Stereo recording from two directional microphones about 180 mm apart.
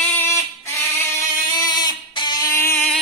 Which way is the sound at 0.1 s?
15° left (ahead or behind).